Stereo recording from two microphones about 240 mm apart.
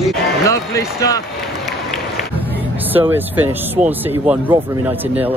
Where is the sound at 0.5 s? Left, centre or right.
Centre.